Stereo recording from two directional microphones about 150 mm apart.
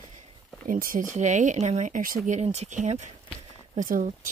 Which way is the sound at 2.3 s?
50° right (ahead or behind).